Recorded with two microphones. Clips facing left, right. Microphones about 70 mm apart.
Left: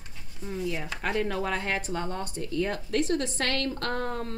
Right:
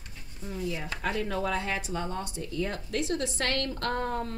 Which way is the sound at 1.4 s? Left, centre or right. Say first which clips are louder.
Left 1 dB; left.